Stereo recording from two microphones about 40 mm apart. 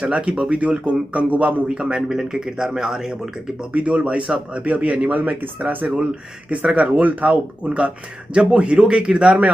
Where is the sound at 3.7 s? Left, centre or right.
Right.